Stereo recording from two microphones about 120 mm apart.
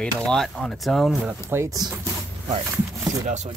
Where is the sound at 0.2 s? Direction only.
5° left (ahead or behind).